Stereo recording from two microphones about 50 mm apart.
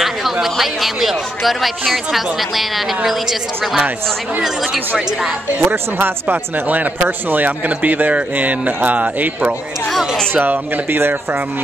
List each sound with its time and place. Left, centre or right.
0.0 s a woman's voice: centre
5.7 s speech: right
10.3 s speech: right